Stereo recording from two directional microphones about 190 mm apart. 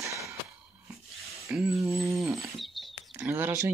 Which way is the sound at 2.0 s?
15° right (ahead or behind).